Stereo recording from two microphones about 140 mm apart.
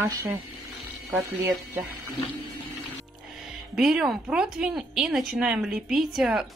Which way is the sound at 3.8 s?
5° right (ahead or behind).